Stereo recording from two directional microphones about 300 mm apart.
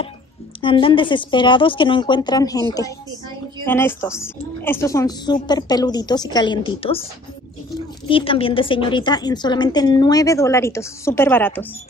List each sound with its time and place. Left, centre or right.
0.6 s a woman's voice: centre
8.1 s a woman's voice: centre